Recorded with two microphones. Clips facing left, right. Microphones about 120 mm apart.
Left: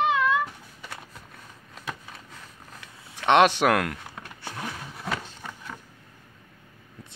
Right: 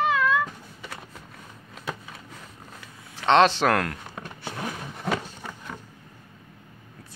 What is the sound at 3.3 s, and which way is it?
Speech, 15° left (ahead or behind).